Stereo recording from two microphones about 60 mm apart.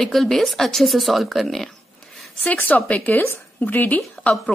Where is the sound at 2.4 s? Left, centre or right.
Left.